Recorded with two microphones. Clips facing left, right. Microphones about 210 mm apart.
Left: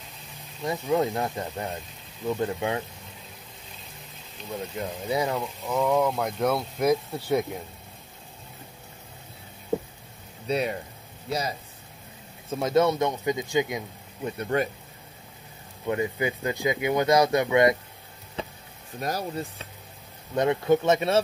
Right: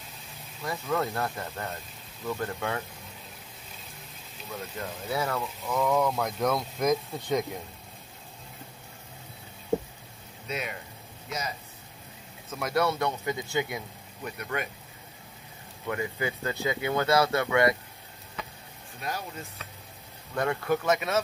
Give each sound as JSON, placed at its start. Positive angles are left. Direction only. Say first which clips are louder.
{"t": 0.7, "sound": "speech", "louder": "left 5 dB", "side_deg": 15}
{"t": 4.5, "sound": "speech", "louder": "left 5 dB", "side_deg": 15}
{"t": 10.5, "sound": "speech", "louder": "left 8 dB", "side_deg": 35}
{"t": 14.4, "sound": "speech", "louder": "left 8 dB", "side_deg": 30}
{"t": 15.9, "sound": "speech", "louder": "left 5 dB", "side_deg": 20}
{"t": 18.4, "sound": "a sound", "louder": "left 6 dB", "side_deg": 30}
{"t": 18.9, "sound": "speech", "louder": "left 6 dB", "side_deg": 40}
{"t": 20.3, "sound": "speech", "louder": "left 6 dB", "side_deg": 20}